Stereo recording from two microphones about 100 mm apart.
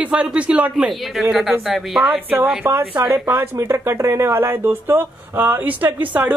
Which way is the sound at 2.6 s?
30° right (ahead or behind).